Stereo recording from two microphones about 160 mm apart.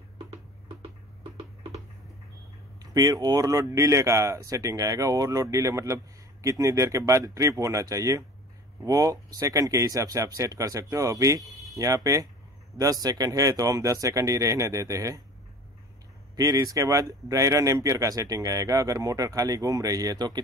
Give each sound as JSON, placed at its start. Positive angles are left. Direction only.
{"t": 0.8, "sound": "a sound", "side_deg": -35}
{"t": 2.8, "sound": "speech", "side_deg": -25}
{"t": 16.3, "sound": "speech", "side_deg": -20}